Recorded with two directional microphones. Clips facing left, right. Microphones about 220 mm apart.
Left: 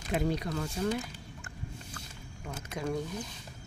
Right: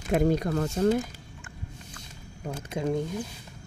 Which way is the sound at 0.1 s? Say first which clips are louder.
Right 7 dB; 45° right (ahead or behind).